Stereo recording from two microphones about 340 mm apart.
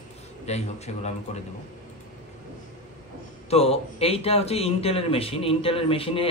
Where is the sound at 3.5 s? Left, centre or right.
Centre.